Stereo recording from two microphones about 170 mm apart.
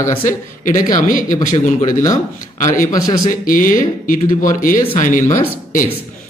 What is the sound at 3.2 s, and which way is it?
Speech, 55° left (ahead or behind).